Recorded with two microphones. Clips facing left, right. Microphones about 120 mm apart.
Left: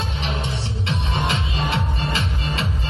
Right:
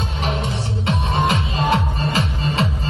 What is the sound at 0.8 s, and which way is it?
Music, 45° right (ahead or behind).